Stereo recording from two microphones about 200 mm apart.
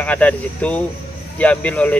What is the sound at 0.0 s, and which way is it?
Speech, 5° left (ahead or behind).